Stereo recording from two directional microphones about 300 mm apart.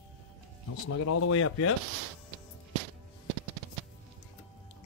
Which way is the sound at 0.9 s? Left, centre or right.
Left.